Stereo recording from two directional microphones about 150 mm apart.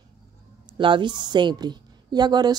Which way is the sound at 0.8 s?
35° right (ahead or behind).